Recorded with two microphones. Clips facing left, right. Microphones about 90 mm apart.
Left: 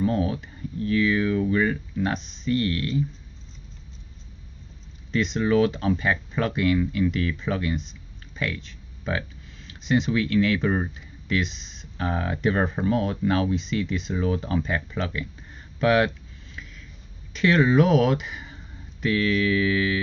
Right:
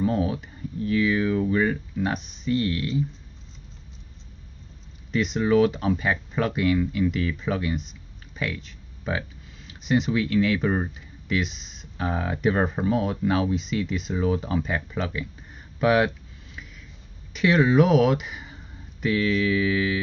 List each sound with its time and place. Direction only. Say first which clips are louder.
0.0 s speech: even; 10° right (ahead or behind)
5.1 s speech: right 1 dB; 5° right (ahead or behind)
17.3 s speech: even; 5° right (ahead or behind)